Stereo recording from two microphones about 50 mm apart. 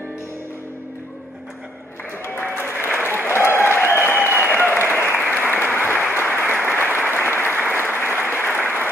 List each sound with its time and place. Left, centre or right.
2.2 s applause: left